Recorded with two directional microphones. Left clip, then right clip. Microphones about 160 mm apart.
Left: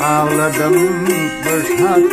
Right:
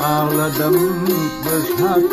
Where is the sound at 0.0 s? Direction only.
15° left (ahead or behind).